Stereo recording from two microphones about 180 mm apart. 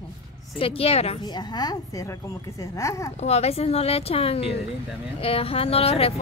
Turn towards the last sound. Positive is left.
turn(degrees=35)  # may be behind; listen again after turning